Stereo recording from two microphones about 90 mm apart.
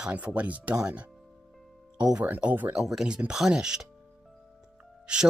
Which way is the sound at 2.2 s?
15° right (ahead or behind).